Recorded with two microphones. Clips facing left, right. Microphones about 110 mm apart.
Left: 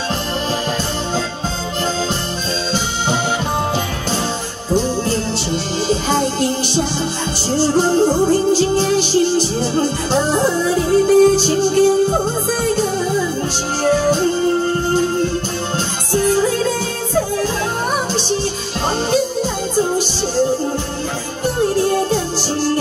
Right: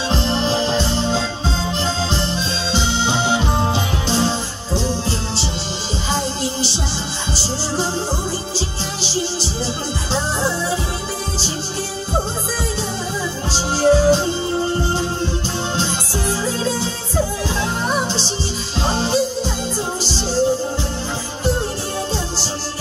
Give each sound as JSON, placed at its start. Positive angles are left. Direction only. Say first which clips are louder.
{"t": 6.4, "sound": "music", "louder": "left 6 dB", "side_deg": 55}
{"t": 16.4, "sound": "music", "louder": "left 3 dB", "side_deg": 60}